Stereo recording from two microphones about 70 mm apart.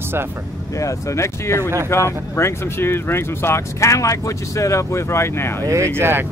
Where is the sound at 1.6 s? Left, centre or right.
Right.